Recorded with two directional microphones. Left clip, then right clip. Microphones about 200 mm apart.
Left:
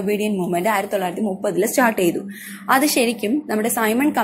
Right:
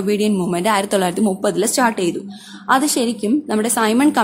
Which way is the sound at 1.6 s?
Centre (ahead or behind).